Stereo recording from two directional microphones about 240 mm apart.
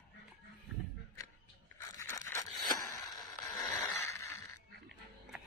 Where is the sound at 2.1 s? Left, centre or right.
Centre.